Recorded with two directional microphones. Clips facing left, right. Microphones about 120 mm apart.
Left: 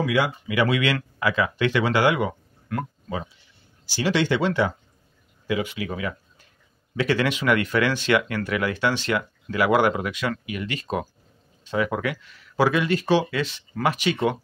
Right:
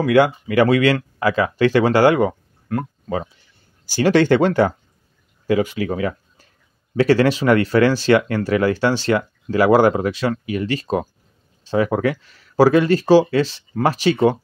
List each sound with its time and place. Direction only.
0.0 s speech: 55° right (ahead or behind); by 2.9 s 35° right (ahead or behind)
3.8 s speech: 45° right (ahead or behind)